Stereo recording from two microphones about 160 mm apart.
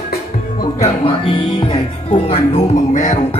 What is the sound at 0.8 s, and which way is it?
Music, 35° left (ahead or behind).